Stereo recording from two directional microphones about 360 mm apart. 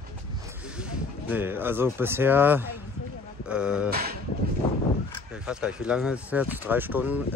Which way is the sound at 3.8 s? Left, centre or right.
Right.